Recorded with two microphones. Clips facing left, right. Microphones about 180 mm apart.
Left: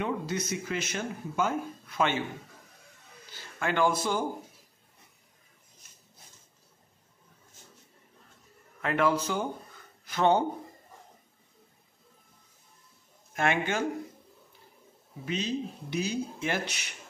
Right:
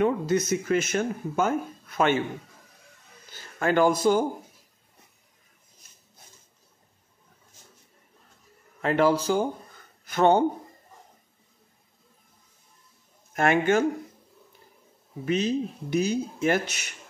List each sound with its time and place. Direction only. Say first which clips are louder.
0.0 s speech: right 8 dB; 45° right (ahead or behind)
3.5 s speech: right 5 dB; 40° right (ahead or behind)
8.8 s speech: right 5 dB; 30° right (ahead or behind)
10.0 s speech: right 4 dB; 50° right (ahead or behind)
13.3 s speech: right 7 dB; 45° right (ahead or behind)
15.2 s speech: right 7 dB; 50° right (ahead or behind)